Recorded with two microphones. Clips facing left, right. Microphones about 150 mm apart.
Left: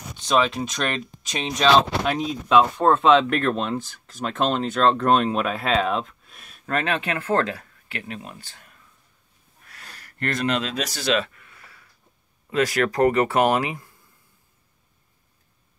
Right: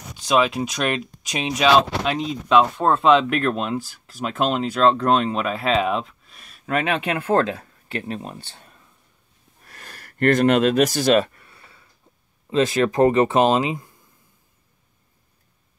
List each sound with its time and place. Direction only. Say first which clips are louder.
0.2 s speech: right 2 dB; 10° right (ahead or behind); by 8.7 s 30° right (ahead or behind)
9.7 s a sound: right 3 dB; 45° right (ahead or behind); by 11.9 s 25° right (ahead or behind)
12.4 s speech: right 3 dB; 25° right (ahead or behind)